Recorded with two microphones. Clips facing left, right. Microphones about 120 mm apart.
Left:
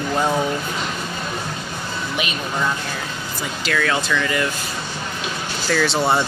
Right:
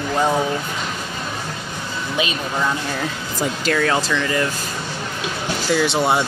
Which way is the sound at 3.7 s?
30° right (ahead or behind).